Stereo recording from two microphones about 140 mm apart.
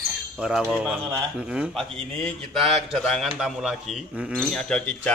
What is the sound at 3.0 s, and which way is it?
Speech, centre (ahead or behind).